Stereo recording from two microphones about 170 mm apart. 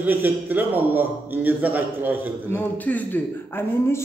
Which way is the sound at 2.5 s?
10° left (ahead or behind).